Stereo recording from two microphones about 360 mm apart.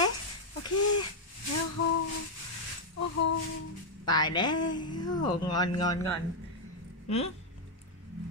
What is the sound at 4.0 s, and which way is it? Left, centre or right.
A woman's voice, centre.